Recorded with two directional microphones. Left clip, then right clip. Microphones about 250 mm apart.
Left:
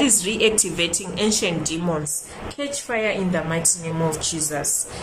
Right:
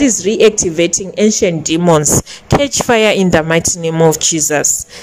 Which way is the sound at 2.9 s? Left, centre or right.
Right.